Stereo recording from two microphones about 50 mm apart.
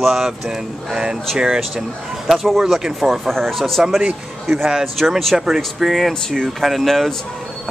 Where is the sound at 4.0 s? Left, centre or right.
Centre.